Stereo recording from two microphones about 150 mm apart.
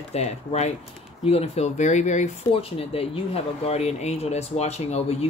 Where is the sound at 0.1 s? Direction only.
45° left (ahead or behind).